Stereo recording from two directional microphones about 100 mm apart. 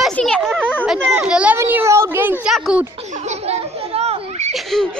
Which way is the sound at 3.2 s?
90° right.